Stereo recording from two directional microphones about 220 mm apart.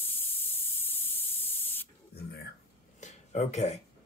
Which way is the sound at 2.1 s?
45° left (ahead or behind).